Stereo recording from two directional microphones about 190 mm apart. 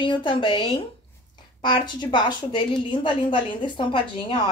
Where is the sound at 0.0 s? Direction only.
25° left (ahead or behind).